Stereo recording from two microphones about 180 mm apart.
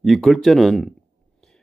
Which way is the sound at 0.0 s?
Centre (ahead or behind).